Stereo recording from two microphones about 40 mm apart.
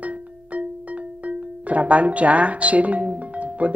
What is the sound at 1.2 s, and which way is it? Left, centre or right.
Speech, right.